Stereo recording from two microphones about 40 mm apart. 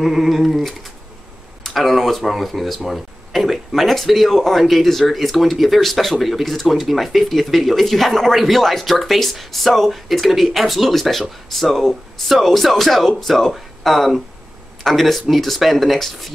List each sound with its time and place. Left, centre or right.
0.0 s speech: centre